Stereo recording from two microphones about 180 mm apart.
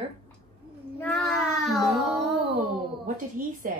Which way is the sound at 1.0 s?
5° left (ahead or behind).